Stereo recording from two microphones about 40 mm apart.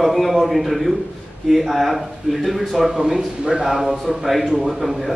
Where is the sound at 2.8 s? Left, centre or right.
Centre.